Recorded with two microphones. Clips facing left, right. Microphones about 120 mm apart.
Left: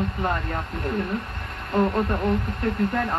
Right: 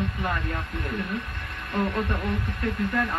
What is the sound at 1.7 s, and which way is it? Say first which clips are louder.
Speech: left 5 dB; 30° left (ahead or behind).